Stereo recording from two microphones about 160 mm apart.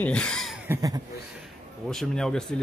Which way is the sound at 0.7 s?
25° right (ahead or behind).